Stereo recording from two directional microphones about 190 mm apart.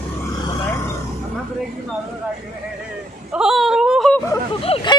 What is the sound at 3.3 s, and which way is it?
Speech, 5° right (ahead or behind).